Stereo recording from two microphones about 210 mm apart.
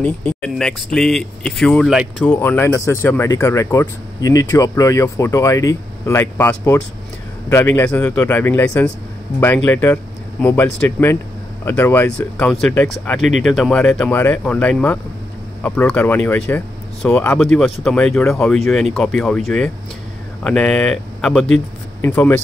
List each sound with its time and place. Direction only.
0.0 s speech: 5° left (ahead or behind)